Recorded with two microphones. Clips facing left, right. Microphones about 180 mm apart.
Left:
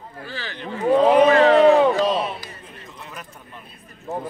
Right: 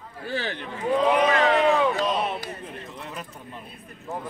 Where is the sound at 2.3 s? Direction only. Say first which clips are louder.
Right 3 dB; 60° right (ahead or behind).